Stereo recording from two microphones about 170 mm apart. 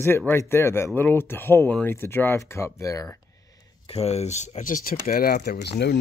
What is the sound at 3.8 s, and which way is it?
Speech, 35° left (ahead or behind).